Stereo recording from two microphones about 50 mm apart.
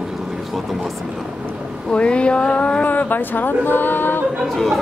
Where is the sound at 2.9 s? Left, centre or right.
Left.